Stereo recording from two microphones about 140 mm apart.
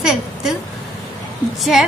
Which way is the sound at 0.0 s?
Centre (ahead or behind).